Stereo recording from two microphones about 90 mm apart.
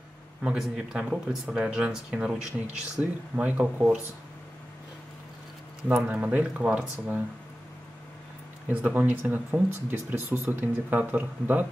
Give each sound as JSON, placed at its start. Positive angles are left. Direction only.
{"t": 0.4, "sound": "speech", "side_deg": -10}
{"t": 6.1, "sound": "speech", "side_deg": -15}
{"t": 8.6, "sound": "speech", "side_deg": -20}